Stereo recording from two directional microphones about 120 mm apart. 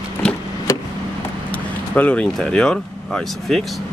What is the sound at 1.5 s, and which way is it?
Speech, 10° left (ahead or behind).